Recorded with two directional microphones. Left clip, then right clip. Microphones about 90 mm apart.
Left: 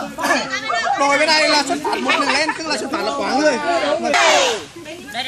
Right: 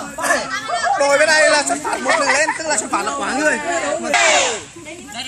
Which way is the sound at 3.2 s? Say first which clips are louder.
Left 4 dB; 55° right (ahead or behind).